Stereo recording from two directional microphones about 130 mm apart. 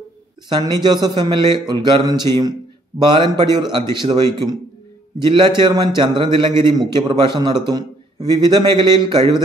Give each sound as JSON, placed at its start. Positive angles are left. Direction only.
{"t": 0.5, "sound": "a man's voice", "side_deg": -30}